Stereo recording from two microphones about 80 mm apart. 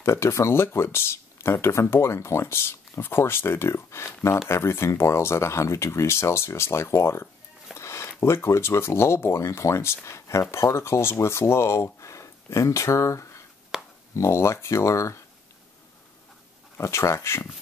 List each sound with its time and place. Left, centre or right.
0.0 s speech: left
7.7 s a sound: left
8.2 s speech: left
13.7 s a sound: centre
14.1 s speech: left
16.7 s speech: left